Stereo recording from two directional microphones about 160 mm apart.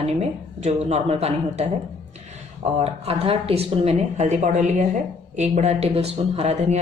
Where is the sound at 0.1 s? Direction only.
45° right (ahead or behind).